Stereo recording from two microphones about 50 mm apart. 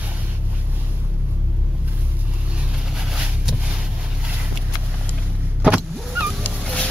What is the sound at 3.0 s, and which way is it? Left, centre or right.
Vehicle, centre.